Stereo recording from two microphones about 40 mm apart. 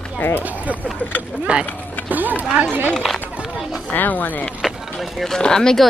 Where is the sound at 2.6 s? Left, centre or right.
Right.